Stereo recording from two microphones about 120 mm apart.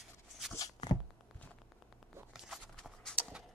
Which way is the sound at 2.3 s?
Centre (ahead or behind).